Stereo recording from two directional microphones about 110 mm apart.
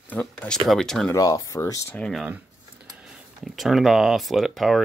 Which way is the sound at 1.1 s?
30° left (ahead or behind).